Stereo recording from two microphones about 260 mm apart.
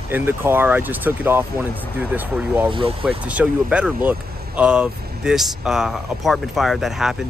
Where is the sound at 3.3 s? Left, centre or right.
Centre.